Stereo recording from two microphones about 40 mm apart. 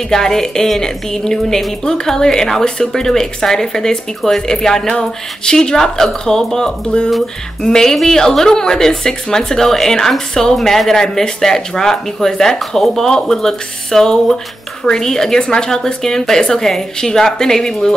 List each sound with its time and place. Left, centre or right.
0.1 s a woman's voice: centre
7.1 s music: centre
7.7 s a woman's voice: centre